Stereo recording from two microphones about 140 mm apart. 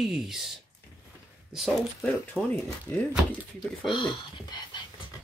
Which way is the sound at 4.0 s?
35° left (ahead or behind).